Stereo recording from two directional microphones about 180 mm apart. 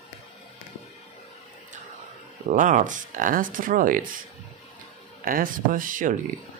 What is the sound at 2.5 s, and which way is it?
Speech, 45° right (ahead or behind).